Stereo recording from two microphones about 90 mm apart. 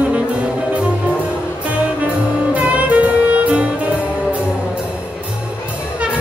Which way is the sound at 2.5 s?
15° right (ahead or behind).